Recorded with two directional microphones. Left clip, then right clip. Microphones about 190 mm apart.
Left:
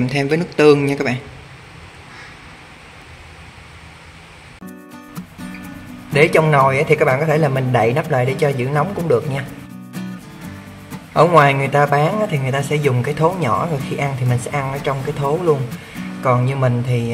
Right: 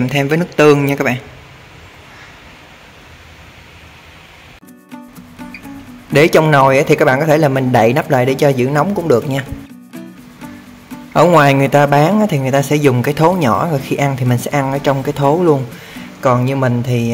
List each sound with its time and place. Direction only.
0.0 s speech: centre (ahead or behind)
6.1 s speech: 30° right (ahead or behind)
9.9 s music: centre (ahead or behind)
11.1 s speech: 35° right (ahead or behind)